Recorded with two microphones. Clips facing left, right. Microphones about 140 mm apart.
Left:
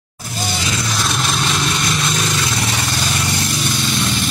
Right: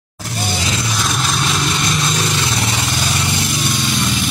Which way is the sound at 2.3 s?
30° right (ahead or behind).